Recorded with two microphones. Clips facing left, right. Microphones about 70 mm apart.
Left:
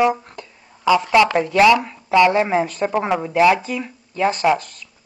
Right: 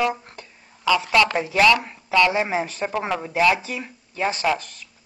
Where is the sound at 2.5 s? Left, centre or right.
Left.